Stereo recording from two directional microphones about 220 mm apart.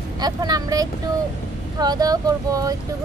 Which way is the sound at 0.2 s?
15° right (ahead or behind).